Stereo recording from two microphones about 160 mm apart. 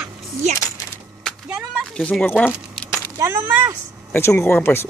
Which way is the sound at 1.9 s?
5° left (ahead or behind).